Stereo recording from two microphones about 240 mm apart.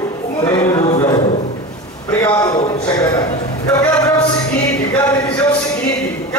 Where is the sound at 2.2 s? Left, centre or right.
Centre.